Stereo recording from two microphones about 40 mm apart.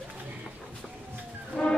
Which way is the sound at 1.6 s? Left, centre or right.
Centre.